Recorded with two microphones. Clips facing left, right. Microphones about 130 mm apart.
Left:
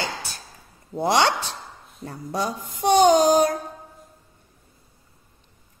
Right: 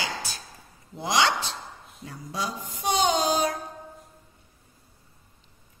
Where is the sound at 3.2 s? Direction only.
40° left (ahead or behind).